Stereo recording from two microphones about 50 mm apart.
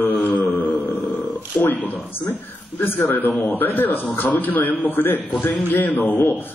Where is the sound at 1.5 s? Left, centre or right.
Centre.